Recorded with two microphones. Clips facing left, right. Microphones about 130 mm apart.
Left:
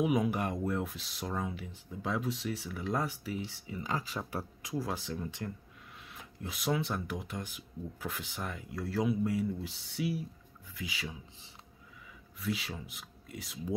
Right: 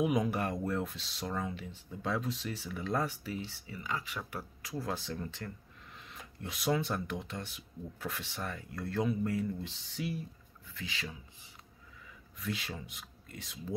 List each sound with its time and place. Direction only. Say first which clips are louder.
0.0 s speech: left 1 dB; 5° left (ahead or behind)
3.8 s speech: left 2 dB; 35° left (ahead or behind)
4.2 s speech: left 4 dB; 25° left (ahead or behind)
4.7 s speech: left 2 dB; 5° left (ahead or behind)
12.4 s speech: left 2 dB; centre (ahead or behind)